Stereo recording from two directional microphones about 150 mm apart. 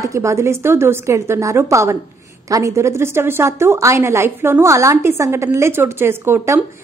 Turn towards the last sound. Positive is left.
turn(degrees=-15)  # may be behind; listen again after turning